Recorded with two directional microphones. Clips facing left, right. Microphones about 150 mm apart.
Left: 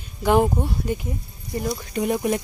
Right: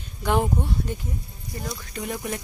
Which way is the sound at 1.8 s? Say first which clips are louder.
Left 10 dB; 20° left (ahead or behind).